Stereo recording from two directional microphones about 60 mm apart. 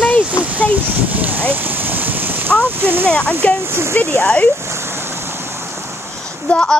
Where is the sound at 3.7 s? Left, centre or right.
Right.